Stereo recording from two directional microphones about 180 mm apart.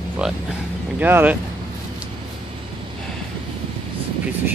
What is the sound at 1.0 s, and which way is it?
Speech, 10° right (ahead or behind).